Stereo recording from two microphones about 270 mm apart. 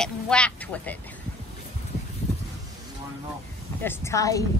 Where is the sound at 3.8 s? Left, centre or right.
Centre.